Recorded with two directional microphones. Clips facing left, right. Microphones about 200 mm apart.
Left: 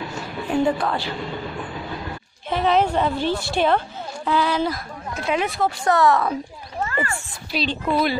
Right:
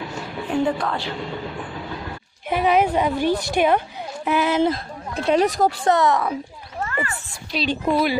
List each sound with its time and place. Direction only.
0.5 s a woman's voice: 5° left (ahead or behind)
2.5 s a woman's voice: 10° right (ahead or behind)
5.1 s speech: 35° right (ahead or behind)
5.9 s a woman's voice: 20° right (ahead or behind)
6.9 s a sound: 40° left (ahead or behind)
7.8 s a woman's voice: 10° right (ahead or behind)